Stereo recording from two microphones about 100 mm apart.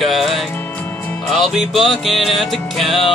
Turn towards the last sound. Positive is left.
turn(degrees=0)  # may be behind; listen again after turning